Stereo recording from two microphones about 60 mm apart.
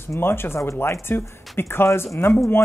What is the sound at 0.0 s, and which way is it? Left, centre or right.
Speech, left.